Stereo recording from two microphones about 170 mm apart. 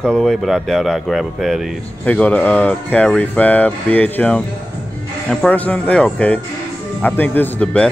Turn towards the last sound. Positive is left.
turn(degrees=10)  # may be behind; listen again after turning